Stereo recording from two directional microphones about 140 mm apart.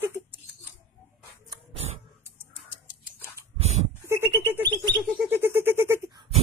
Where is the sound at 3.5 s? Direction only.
50° right (ahead or behind).